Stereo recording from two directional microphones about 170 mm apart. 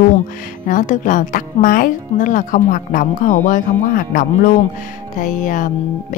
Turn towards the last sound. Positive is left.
turn(degrees=50)  # may be behind; listen again after turning